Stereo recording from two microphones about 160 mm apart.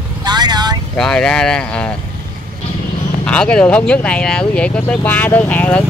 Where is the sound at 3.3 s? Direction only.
5° left (ahead or behind).